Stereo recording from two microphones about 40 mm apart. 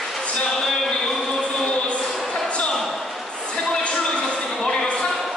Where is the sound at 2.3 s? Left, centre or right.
Left.